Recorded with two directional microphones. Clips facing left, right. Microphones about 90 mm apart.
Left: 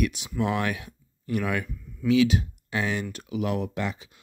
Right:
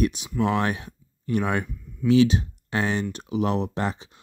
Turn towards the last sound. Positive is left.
turn(degrees=-35)  # may be behind; listen again after turning